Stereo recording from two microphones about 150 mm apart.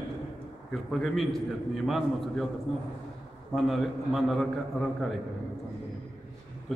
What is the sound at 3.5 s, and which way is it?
A man's voice, centre (ahead or behind).